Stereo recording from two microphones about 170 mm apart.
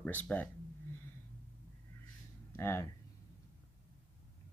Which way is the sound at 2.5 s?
15° left (ahead or behind).